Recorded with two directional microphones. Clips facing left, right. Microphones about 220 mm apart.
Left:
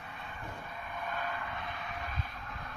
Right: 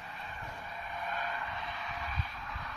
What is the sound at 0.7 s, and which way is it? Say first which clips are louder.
Vehicle: even; 55° left (ahead or behind).